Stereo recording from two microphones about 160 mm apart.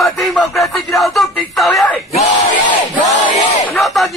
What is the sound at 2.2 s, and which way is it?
Crowd, 50° left (ahead or behind).